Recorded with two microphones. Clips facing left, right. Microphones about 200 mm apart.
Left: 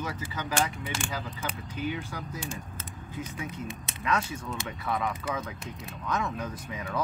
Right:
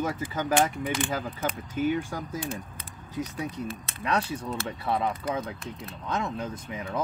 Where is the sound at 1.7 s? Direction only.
50° right (ahead or behind).